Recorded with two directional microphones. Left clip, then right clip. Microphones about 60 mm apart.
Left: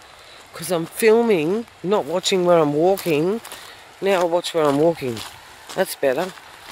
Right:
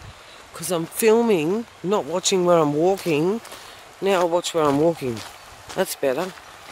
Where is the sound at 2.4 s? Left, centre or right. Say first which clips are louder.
Left 2 dB; centre.